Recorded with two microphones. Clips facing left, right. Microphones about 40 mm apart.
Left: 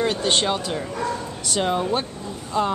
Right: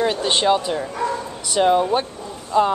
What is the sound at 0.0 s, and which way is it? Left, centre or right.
A woman's voice, centre.